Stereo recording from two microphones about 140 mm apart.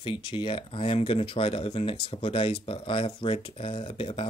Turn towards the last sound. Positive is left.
turn(degrees=40)  # may be behind; listen again after turning